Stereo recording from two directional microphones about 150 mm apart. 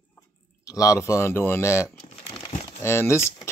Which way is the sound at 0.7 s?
20° left (ahead or behind).